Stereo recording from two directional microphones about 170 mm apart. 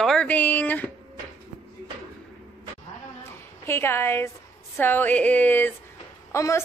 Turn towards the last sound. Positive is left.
turn(degrees=15)  # may be behind; listen again after turning